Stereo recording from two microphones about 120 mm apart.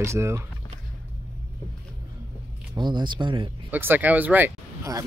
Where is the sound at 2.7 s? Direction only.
40° right (ahead or behind).